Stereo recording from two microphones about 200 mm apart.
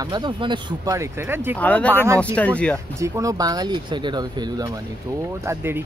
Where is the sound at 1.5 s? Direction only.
5° left (ahead or behind).